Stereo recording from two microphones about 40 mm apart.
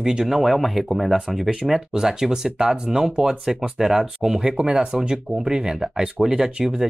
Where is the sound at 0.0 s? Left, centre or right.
Centre.